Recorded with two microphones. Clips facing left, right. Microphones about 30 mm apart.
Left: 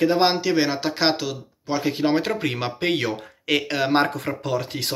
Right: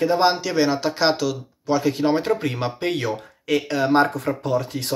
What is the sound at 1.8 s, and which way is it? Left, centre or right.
Speech, left.